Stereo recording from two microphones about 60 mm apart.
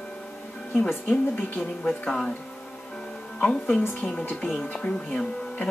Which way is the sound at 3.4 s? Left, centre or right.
Centre.